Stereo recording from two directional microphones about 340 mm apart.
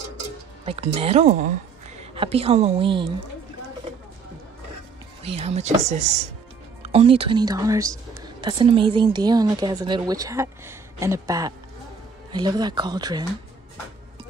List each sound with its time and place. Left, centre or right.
0.7 s speech: centre
5.2 s a woman's voice: centre